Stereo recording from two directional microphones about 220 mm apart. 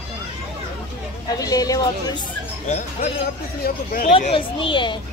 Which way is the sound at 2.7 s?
30° left (ahead or behind).